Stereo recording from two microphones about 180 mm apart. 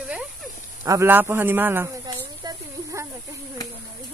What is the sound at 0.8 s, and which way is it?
Speech, 15° right (ahead or behind).